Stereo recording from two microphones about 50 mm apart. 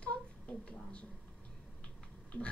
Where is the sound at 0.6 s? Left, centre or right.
Centre.